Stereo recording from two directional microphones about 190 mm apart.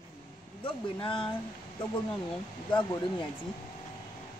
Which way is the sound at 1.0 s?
25° left (ahead or behind).